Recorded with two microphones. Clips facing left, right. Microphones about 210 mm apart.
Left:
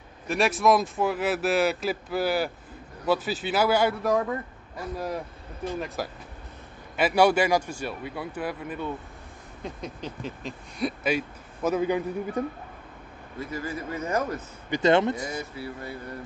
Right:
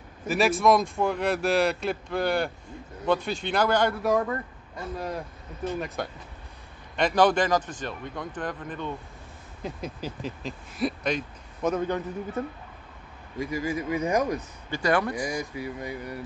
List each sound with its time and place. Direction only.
0.3 s speech: centre (ahead or behind)
9.6 s speech: 5° right (ahead or behind); by 12.4 s 10° left (ahead or behind)
13.4 s a man's voice: 10° right (ahead or behind)
14.7 s speech: 25° left (ahead or behind)
15.5 s a man's voice: 15° right (ahead or behind)